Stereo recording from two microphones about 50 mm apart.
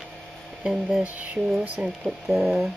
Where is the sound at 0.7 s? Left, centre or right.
Centre.